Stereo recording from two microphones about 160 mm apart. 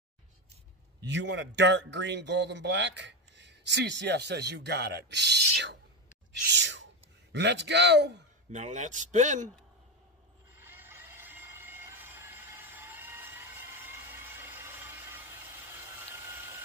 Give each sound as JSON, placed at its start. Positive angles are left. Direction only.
{"t": 1.0, "sound": "speech", "side_deg": -90}
{"t": 8.5, "sound": "speech", "side_deg": -45}
{"t": 10.6, "sound": "a sound", "side_deg": -15}
{"t": 15.7, "sound": "vehicle", "side_deg": -15}